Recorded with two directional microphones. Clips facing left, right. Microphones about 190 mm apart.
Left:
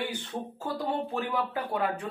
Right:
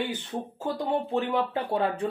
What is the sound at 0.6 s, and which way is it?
Speech, 20° right (ahead or behind).